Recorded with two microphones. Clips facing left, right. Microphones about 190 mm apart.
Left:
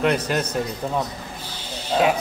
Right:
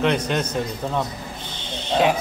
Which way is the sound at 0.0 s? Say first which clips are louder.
Even; 5° left (ahead or behind).